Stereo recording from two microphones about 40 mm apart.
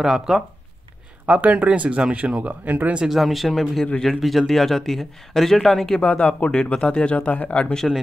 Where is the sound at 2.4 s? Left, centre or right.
Right.